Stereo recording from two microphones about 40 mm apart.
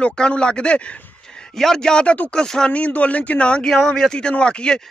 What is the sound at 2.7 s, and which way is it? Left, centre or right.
Speech, left.